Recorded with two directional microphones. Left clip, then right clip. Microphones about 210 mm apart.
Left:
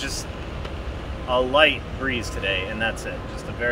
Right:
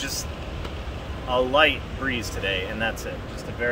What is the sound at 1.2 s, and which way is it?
Speech, 15° right (ahead or behind).